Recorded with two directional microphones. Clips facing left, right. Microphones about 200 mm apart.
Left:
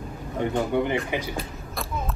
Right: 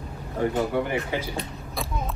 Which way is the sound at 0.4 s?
20° left (ahead or behind).